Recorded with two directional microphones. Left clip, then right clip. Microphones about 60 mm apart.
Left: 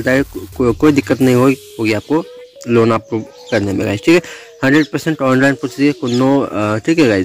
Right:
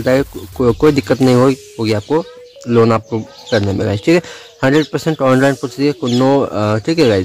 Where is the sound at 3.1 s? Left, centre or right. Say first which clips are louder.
Right 1 dB; left.